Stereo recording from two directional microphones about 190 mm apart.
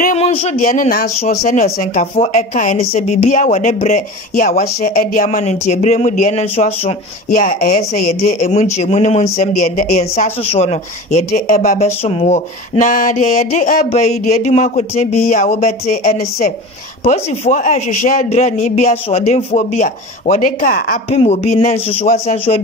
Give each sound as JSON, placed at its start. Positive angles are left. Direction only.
{"t": 0.0, "sound": "speech", "side_deg": 35}
{"t": 7.2, "sound": "speech", "side_deg": 50}
{"t": 7.9, "sound": "speech", "side_deg": 35}
{"t": 21.1, "sound": "speech", "side_deg": 35}